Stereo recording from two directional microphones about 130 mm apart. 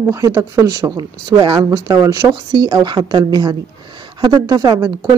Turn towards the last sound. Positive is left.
turn(degrees=-30)  # may be behind; listen again after turning